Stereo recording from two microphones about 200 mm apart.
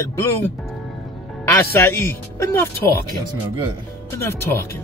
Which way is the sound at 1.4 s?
10° left (ahead or behind).